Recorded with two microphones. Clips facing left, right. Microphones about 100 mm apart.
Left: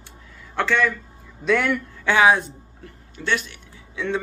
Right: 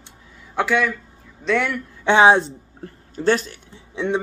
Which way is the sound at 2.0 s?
25° right (ahead or behind).